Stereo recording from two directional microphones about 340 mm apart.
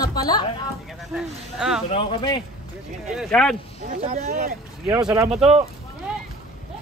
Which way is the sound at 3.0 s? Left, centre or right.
Centre.